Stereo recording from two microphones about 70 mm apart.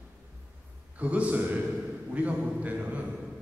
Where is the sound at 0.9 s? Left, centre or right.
Right.